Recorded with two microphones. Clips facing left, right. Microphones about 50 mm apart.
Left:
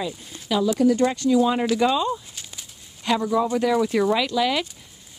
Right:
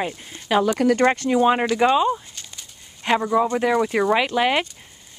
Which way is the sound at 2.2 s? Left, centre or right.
Centre.